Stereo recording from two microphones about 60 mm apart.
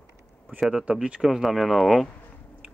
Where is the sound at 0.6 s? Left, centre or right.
Centre.